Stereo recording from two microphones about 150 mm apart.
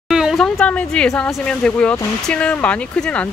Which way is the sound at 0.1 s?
5° right (ahead or behind).